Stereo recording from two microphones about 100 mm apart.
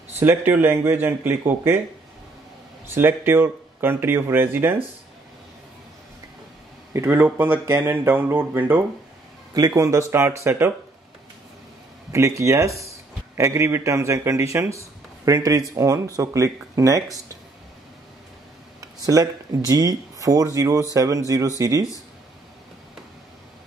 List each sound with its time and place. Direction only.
0.2 s speech: 20° right (ahead or behind)
2.9 s speech: 20° right (ahead or behind)
6.9 s speech: 25° right (ahead or behind)
9.5 s speech: 40° right (ahead or behind)
12.1 s speech: 30° right (ahead or behind)
18.8 s speech: 35° right (ahead or behind)